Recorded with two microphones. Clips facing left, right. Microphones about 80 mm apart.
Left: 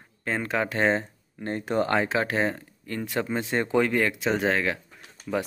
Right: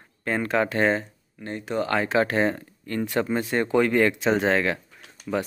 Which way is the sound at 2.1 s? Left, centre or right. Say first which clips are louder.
Right 3 dB; centre.